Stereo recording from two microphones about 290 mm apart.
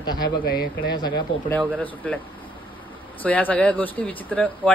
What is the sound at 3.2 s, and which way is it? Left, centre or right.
A man's voice, centre.